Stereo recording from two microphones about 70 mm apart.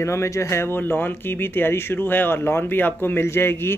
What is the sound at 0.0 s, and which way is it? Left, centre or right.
Speech, left.